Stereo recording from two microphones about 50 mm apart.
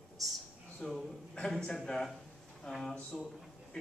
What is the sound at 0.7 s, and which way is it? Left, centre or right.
A man's voice, centre.